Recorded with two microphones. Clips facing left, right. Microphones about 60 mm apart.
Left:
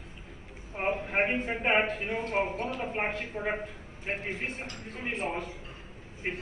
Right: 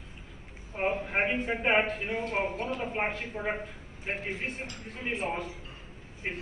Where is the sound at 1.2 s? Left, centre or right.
Left.